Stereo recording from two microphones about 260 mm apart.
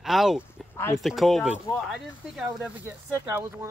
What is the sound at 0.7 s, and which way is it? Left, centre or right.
Speech, centre.